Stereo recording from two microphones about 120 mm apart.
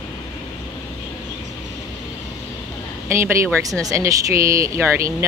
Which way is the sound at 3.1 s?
20° right (ahead or behind).